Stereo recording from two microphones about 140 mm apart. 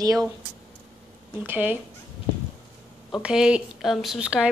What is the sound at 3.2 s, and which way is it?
Speech, 5° right (ahead or behind).